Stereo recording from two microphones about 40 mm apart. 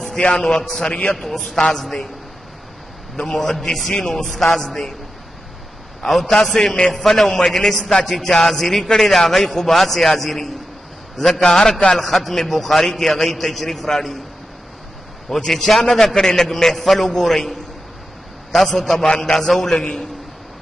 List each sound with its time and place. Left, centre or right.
0.4 s a man's voice: centre
3.2 s a man's voice: centre
6.0 s a man's voice: centre
11.4 s a man's voice: centre
11.9 s a man's voice: centre
15.2 s a man's voice: centre
19.0 s a man's voice: centre